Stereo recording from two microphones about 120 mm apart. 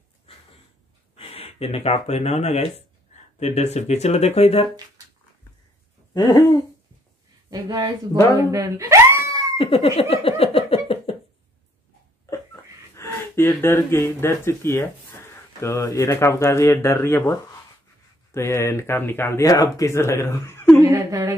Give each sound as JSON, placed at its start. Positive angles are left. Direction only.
{"t": 1.1, "sound": "speech", "side_deg": 55}
{"t": 6.1, "sound": "hoot", "side_deg": 30}
{"t": 7.4, "sound": "speech", "side_deg": -30}
{"t": 8.5, "sound": "wail", "side_deg": -25}
{"t": 9.6, "sound": "a sound", "side_deg": 55}
{"t": 12.9, "sound": "speech", "side_deg": 20}
{"t": 19.4, "sound": "speech", "side_deg": 30}
{"t": 20.9, "sound": "a sound", "side_deg": -30}